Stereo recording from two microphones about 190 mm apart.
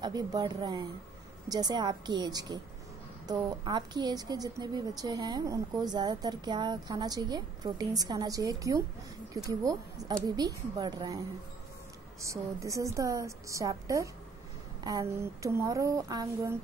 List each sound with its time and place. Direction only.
0.0 s a woman's voice: 20° right (ahead or behind)
12.2 s a woman's voice: 15° right (ahead or behind)